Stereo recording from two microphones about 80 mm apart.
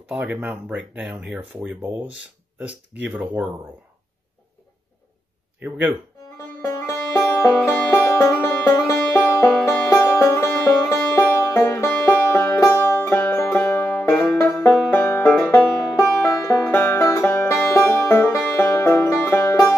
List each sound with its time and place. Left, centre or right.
0.1 s speech: centre
6.3 s music: left
14.6 s banjo: left
16.7 s music: left